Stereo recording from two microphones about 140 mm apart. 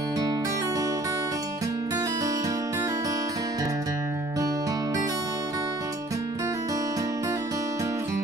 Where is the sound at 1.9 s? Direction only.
25° right (ahead or behind).